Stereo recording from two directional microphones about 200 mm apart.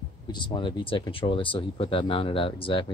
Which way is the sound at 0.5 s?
25° left (ahead or behind).